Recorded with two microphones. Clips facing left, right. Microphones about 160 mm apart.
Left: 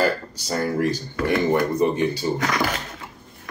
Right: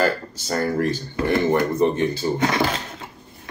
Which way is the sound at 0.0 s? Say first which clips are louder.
Right 1 dB; 10° left (ahead or behind).